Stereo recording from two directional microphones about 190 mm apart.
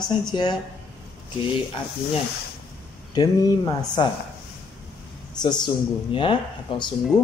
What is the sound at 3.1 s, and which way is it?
A man's voice, 20° left (ahead or behind).